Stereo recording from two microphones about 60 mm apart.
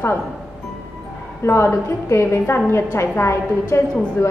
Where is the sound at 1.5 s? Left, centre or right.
Left.